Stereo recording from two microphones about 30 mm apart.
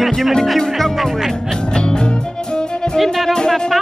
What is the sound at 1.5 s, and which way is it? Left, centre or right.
Music, left.